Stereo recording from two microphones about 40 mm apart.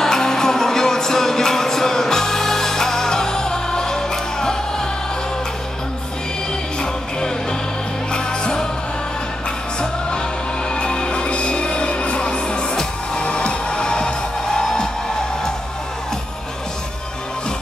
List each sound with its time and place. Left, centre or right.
0.0 s music: centre
6.8 s music: centre
10.7 s music: left